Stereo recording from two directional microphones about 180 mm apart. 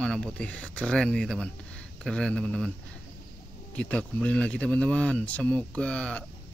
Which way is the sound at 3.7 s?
5° left (ahead or behind).